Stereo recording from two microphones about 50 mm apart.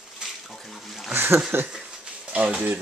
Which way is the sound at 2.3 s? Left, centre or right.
Right.